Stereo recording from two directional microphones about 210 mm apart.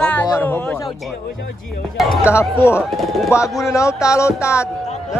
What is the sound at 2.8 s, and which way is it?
Speech, centre (ahead or behind).